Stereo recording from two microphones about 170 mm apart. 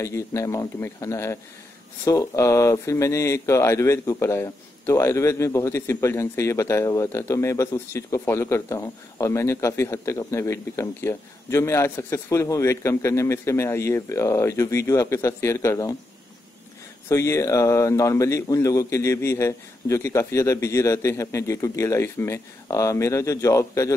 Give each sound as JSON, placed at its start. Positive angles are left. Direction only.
{"t": 0.0, "sound": "a man's voice", "side_deg": 15}
{"t": 17.1, "sound": "a man's voice", "side_deg": 20}